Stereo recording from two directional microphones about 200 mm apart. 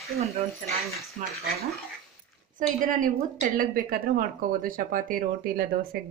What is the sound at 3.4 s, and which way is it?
A woman's voice, 45° right (ahead or behind).